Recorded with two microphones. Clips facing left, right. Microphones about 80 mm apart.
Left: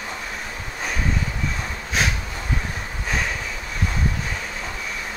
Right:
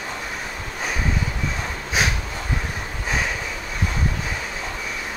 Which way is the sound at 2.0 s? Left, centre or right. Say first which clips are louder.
Right 1 dB; centre.